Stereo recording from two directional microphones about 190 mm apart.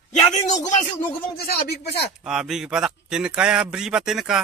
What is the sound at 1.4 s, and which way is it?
Speech, 55° left (ahead or behind).